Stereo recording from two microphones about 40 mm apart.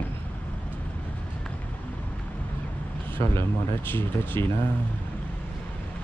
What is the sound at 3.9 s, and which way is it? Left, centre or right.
Speech, left.